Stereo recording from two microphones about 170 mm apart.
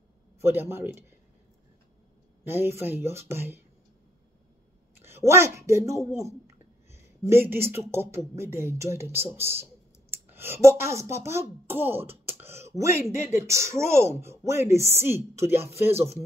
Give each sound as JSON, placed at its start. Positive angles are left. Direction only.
{"t": 0.4, "sound": "speech", "side_deg": -15}
{"t": 2.4, "sound": "speech", "side_deg": -15}
{"t": 5.0, "sound": "speech", "side_deg": -15}
{"t": 12.3, "sound": "a sound", "side_deg": -15}
{"t": 13.3, "sound": "speech", "side_deg": -15}